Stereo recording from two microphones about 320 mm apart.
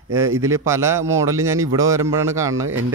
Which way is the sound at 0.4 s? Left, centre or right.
Centre.